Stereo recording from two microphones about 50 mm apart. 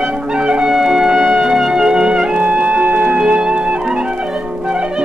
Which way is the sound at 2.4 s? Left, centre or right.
Right.